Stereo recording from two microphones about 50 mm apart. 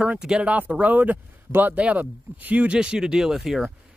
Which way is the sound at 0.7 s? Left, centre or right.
Right.